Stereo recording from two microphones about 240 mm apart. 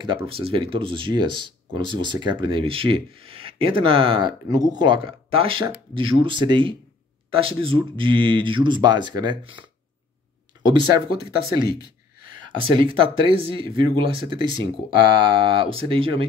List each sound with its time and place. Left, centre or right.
0.0 s speech: centre
12.4 s speech: right